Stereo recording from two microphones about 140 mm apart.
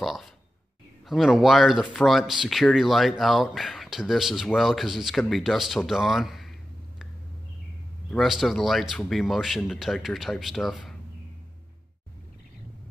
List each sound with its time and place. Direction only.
0.0 s speech: centre (ahead or behind)
8.1 s speech: centre (ahead or behind)